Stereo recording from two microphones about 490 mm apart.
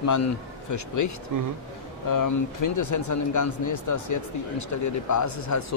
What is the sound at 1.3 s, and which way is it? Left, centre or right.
Speech, right.